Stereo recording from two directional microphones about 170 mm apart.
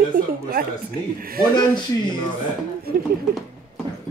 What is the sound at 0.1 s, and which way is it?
Speech, 60° right (ahead or behind).